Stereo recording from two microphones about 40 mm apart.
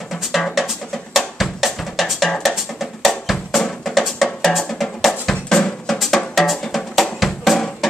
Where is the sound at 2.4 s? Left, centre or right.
Centre.